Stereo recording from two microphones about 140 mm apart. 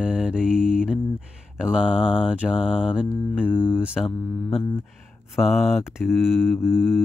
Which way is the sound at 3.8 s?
Centre (ahead or behind).